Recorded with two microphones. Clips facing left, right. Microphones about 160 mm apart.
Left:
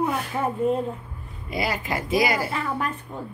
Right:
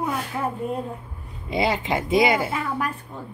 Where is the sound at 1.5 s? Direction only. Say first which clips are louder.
Right 4 dB; 25° right (ahead or behind).